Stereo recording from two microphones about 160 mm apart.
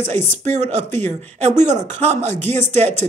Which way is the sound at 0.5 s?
45° right (ahead or behind).